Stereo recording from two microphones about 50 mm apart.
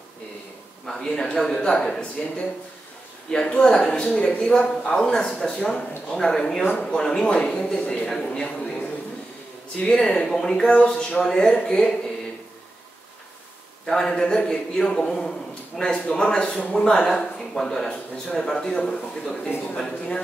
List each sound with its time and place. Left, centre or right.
0.8 s speech: centre
9.8 s speech: centre
13.8 s speech: centre